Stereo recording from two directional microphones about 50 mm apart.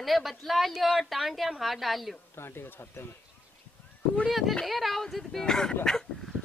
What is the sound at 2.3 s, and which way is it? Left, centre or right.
Speech, left.